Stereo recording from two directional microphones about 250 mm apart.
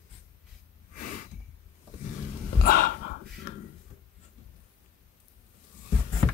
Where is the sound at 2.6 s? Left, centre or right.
Left.